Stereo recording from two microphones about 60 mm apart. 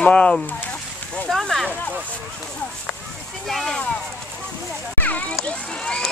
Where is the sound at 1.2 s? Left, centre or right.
Centre.